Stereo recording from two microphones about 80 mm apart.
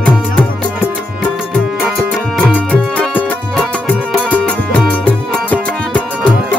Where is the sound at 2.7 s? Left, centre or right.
Centre.